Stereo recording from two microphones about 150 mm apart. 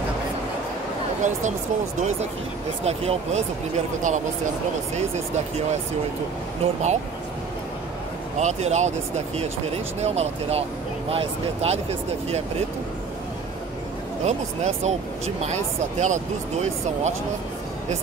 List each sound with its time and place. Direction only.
1.2 s speech: 50° right (ahead or behind)
2.8 s speech: 45° right (ahead or behind)
6.6 s speech: 50° right (ahead or behind)
8.4 s speech: 50° right (ahead or behind)
14.2 s speech: 50° right (ahead or behind)